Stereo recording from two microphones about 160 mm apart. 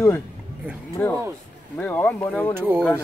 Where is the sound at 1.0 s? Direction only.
10° left (ahead or behind).